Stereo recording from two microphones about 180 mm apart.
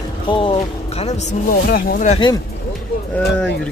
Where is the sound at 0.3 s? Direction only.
30° left (ahead or behind).